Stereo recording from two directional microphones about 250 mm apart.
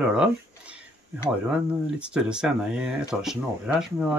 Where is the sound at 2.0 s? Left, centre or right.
Centre.